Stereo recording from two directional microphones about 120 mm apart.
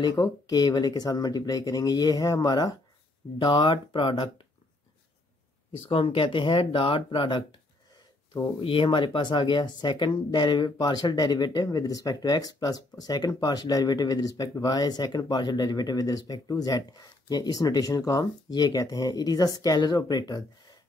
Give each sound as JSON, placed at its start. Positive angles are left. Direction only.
{"t": 0.1, "sound": "speech", "side_deg": 30}
{"t": 5.9, "sound": "speech", "side_deg": 50}